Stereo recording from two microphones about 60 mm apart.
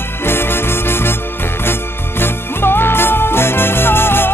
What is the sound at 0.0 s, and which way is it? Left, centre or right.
Music, left.